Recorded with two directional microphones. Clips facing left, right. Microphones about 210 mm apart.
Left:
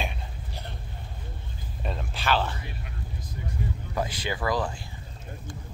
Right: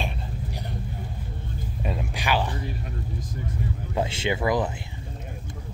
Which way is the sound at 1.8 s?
10° right (ahead or behind).